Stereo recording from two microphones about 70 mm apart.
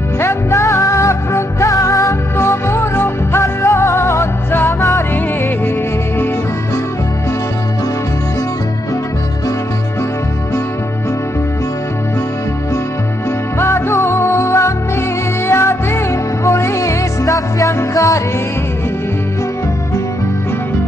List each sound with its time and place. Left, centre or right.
0.2 s music: left
2.3 s music: left
4.7 s music: left
13.6 s music: left